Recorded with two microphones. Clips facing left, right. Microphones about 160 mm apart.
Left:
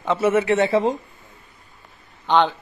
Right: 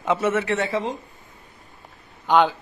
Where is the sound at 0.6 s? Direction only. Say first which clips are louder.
Left 6 dB; 30° left (ahead or behind).